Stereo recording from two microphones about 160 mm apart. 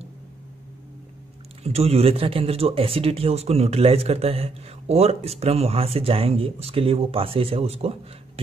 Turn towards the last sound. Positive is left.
turn(degrees=-40)  # may be behind; listen again after turning